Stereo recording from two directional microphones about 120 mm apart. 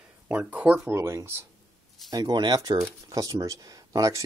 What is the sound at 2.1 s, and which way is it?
Speech, 35° right (ahead or behind).